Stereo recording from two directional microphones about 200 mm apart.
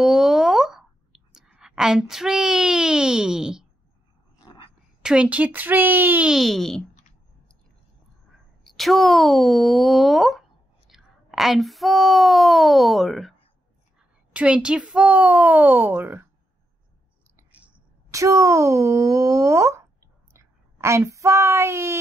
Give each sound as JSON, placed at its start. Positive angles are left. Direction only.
{"t": 0.0, "sound": "clicking", "side_deg": 0}
{"t": 5.0, "sound": "speech", "side_deg": -5}
{"t": 8.6, "sound": "speech", "side_deg": 0}
{"t": 17.4, "sound": "speech", "side_deg": -5}
{"t": 20.3, "sound": "a sound", "side_deg": -15}